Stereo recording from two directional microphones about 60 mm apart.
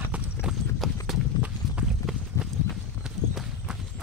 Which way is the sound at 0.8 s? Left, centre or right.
Centre.